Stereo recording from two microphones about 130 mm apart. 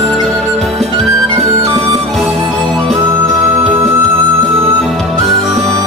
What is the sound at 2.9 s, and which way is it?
Music, 25° right (ahead or behind).